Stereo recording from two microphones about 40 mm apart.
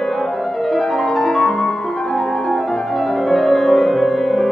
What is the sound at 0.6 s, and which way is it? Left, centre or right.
Music, centre.